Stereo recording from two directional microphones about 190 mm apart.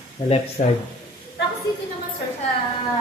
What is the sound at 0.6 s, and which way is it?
Speech, 50° left (ahead or behind).